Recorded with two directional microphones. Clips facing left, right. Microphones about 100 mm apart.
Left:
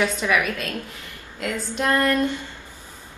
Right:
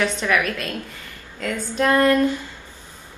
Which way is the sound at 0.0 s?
10° left (ahead or behind).